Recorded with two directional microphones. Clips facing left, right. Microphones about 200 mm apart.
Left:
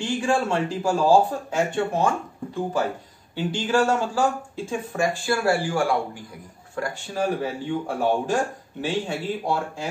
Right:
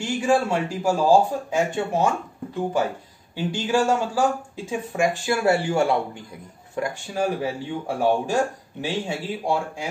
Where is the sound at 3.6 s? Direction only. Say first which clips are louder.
Even; 10° right (ahead or behind).